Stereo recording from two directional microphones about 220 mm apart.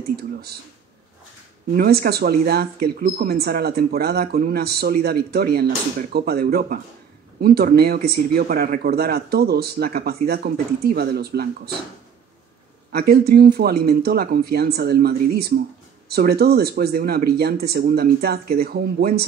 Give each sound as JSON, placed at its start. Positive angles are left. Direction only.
{"t": 0.1, "sound": "speech", "side_deg": -45}
{"t": 1.7, "sound": "speech", "side_deg": -45}
{"t": 12.9, "sound": "speech", "side_deg": -45}